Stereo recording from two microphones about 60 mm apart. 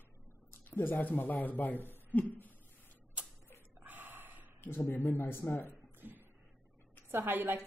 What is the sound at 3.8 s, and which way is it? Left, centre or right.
Gasp, right.